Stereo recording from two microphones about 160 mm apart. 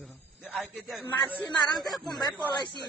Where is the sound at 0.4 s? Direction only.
Centre (ahead or behind).